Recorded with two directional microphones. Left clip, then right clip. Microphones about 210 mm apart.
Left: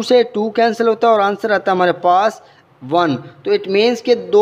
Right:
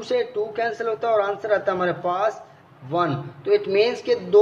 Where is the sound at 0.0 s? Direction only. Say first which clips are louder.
Left 10 dB; 55° left (ahead or behind).